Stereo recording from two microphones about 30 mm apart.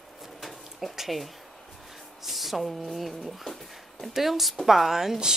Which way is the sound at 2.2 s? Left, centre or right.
Centre.